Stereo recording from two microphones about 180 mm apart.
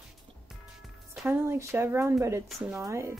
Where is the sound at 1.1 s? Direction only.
10° right (ahead or behind).